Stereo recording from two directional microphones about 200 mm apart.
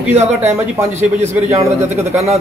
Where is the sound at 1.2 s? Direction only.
10° right (ahead or behind).